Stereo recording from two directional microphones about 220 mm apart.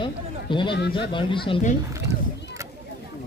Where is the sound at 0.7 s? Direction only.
50° left (ahead or behind).